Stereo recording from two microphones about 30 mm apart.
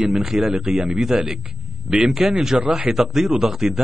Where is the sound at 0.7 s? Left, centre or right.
Right.